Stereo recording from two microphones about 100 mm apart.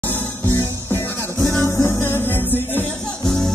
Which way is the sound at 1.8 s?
25° left (ahead or behind).